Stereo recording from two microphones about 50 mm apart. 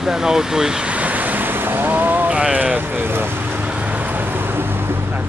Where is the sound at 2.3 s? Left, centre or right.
Right.